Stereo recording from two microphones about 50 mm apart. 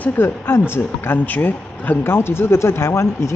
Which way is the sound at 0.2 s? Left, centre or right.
Left.